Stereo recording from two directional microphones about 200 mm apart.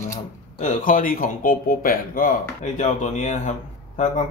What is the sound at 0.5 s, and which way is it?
Speech, 40° left (ahead or behind).